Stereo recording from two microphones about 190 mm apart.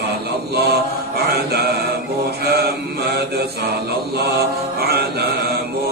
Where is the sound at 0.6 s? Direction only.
60° right (ahead or behind).